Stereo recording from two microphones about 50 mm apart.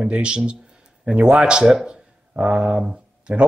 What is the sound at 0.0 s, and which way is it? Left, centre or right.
Speech, centre.